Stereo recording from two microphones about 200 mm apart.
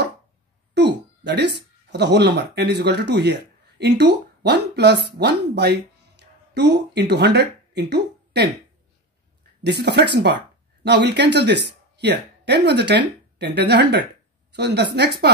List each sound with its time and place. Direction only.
0.7 s a sound: 55° right (ahead or behind)
1.9 s speech: 60° right (ahead or behind)
9.6 s a woman's voice: 55° right (ahead or behind)